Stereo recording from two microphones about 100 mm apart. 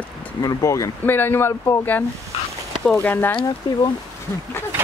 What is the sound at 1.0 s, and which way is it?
Speech, 20° left (ahead or behind).